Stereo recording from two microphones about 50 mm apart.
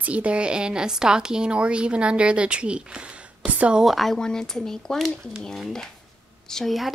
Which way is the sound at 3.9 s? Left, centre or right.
Centre.